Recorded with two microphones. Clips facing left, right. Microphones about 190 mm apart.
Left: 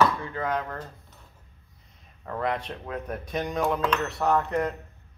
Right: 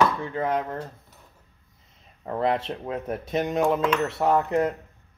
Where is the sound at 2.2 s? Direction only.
25° right (ahead or behind).